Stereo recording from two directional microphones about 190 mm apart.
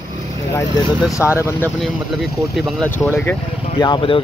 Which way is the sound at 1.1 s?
15° left (ahead or behind).